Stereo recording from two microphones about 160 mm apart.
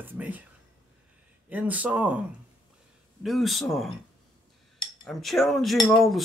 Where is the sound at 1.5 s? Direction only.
10° right (ahead or behind).